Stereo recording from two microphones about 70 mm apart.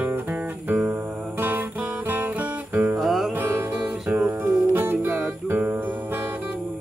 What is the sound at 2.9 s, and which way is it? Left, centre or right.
Music, centre.